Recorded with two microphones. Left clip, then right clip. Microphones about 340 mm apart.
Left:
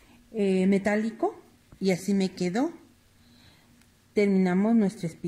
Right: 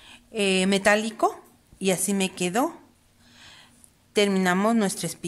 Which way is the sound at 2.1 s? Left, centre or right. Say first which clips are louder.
Right 3 dB; right.